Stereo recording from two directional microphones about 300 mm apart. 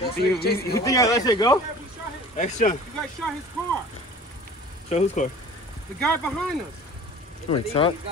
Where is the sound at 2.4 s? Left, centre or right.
Left.